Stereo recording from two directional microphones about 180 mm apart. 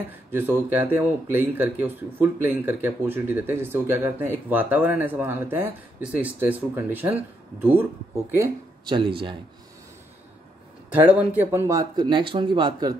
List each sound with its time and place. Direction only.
0.3 s speech: 10° right (ahead or behind)
8.4 s speech: 25° right (ahead or behind)
11.0 s speech: 10° right (ahead or behind); by 12.9 s 25° right (ahead or behind)